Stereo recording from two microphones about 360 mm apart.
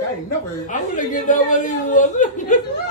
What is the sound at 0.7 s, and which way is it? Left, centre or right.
Speech, left.